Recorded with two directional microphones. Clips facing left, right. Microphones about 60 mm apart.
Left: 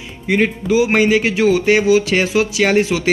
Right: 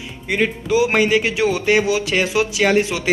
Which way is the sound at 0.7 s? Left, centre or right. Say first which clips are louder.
Left 2 dB; left.